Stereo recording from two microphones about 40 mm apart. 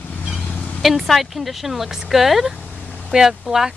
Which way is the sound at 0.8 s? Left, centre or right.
Centre.